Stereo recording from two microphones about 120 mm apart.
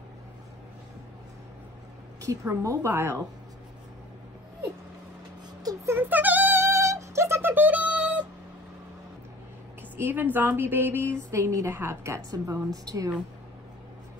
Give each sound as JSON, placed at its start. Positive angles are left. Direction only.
{"t": 2.3, "sound": "speech", "side_deg": -30}
{"t": 5.6, "sound": "a sound", "side_deg": -30}
{"t": 5.9, "sound": "synthetic singing", "side_deg": -15}
{"t": 9.9, "sound": "speech", "side_deg": -15}